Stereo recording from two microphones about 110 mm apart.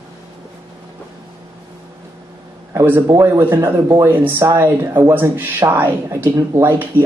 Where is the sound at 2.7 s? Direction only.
20° right (ahead or behind).